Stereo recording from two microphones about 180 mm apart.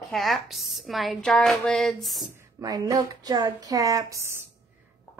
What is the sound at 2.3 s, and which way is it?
Speech, 20° right (ahead or behind).